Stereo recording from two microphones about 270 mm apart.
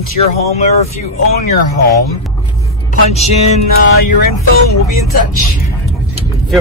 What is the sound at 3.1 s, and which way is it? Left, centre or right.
Speech, left.